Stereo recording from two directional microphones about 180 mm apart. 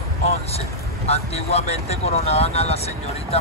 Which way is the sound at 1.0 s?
35° left (ahead or behind).